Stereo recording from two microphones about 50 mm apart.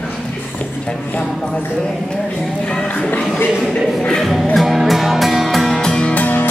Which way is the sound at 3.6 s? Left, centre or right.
Centre.